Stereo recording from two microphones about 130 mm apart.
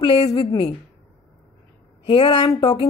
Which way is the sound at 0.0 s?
45° left (ahead or behind).